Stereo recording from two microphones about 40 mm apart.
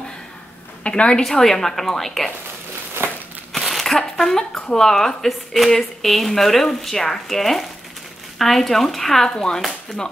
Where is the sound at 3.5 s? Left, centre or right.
Centre.